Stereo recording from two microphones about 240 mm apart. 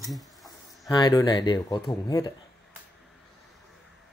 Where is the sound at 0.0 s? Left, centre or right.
Centre.